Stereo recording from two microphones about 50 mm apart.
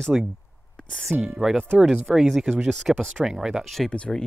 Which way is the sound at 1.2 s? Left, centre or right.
Centre.